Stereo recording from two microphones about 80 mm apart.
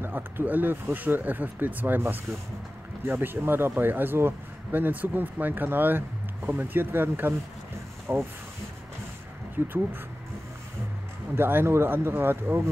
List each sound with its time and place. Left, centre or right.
0.0 s speech: right
9.6 s speech: right
11.3 s speech: right